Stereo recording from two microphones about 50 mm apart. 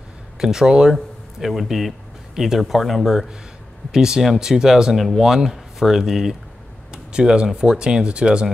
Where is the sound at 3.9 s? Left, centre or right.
Centre.